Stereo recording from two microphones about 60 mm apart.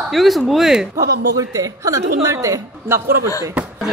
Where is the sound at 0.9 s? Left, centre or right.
Right.